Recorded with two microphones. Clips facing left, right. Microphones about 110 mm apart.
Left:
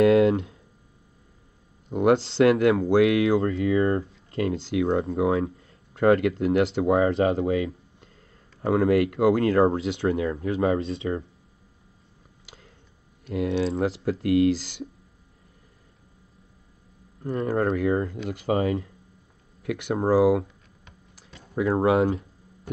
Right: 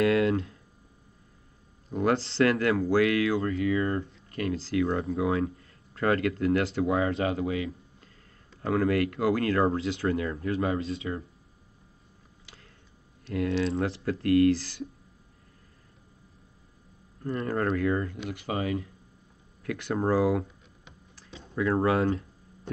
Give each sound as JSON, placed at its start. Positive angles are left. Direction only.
{"t": 0.0, "sound": "a sound", "side_deg": 25}
{"t": 1.9, "sound": "speech", "side_deg": 20}
{"t": 3.3, "sound": "speech", "side_deg": 30}
{"t": 8.6, "sound": "speech", "side_deg": 20}
{"t": 13.2, "sound": "speech", "side_deg": 15}
{"t": 14.5, "sound": "speech", "side_deg": 90}
{"t": 17.4, "sound": "speech", "side_deg": 15}
{"t": 18.5, "sound": "speech", "side_deg": 30}
{"t": 19.6, "sound": "speech", "side_deg": 15}